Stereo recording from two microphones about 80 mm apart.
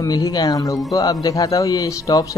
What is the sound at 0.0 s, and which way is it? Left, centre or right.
Speech, left.